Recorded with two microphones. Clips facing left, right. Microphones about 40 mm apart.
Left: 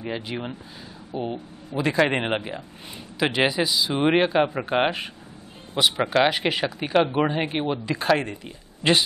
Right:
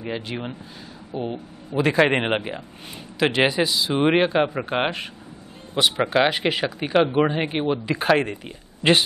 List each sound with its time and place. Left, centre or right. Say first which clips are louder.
0.0 s speech: right 1 dB; centre
1.8 s speech: right 3 dB; centre
3.2 s speech: right 2 dB; centre